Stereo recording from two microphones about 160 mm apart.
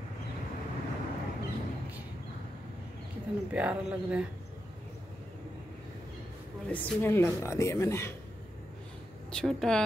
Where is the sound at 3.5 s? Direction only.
10° right (ahead or behind).